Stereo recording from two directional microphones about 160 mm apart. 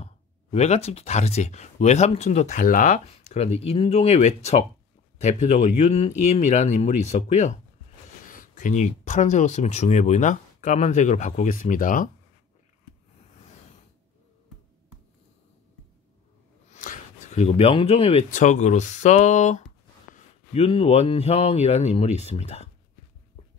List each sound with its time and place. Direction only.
0.0 s speech: 40° left (ahead or behind); by 3.0 s 55° left (ahead or behind)
3.1 s speech: 40° left (ahead or behind)
16.7 s a sound: 50° left (ahead or behind)
18.3 s speech: 50° left (ahead or behind)
20.2 s speech: 35° left (ahead or behind)